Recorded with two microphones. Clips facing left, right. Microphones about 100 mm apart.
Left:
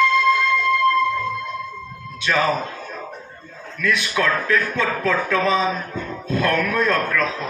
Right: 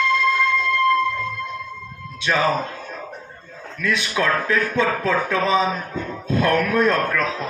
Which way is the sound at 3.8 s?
20° right (ahead or behind).